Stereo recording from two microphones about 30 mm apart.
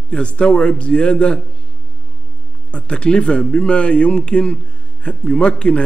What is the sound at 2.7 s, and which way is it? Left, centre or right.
A man's voice, left.